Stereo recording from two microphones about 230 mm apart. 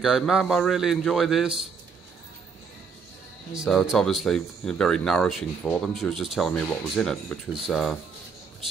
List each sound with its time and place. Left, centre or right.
0.0 s speech: centre
3.5 s speech: centre